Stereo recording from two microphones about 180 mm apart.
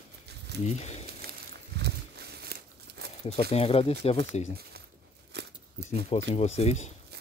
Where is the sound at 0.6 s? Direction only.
40° left (ahead or behind).